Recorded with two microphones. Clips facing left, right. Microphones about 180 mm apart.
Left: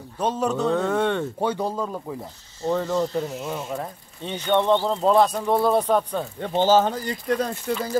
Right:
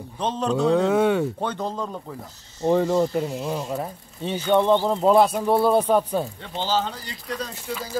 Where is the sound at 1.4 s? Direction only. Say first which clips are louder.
Left 3 dB; 10° left (ahead or behind).